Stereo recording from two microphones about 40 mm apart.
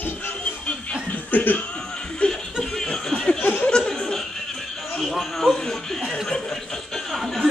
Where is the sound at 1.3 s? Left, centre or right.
Left.